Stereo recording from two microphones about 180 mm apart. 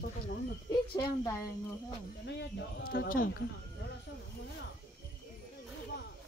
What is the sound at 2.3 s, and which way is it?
Speech, 70° left (ahead or behind).